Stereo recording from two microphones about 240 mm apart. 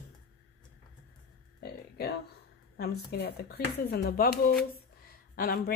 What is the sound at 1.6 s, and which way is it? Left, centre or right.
Speech, left.